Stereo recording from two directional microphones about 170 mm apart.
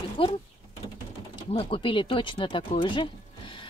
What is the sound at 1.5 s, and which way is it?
Speech, 30° left (ahead or behind).